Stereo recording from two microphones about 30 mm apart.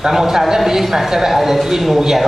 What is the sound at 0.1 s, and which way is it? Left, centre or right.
A woman's voice, centre.